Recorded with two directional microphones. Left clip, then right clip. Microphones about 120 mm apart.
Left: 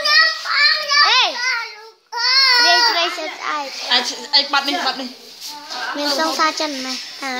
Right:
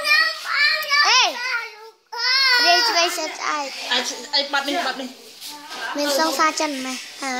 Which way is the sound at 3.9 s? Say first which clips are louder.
Left 6 dB; 45° left (ahead or behind).